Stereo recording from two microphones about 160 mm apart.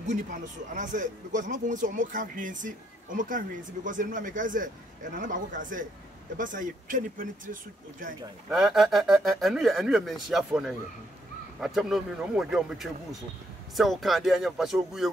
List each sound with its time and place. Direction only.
0.0 s speech: 50° right (ahead or behind)
8.5 s speech: centre (ahead or behind)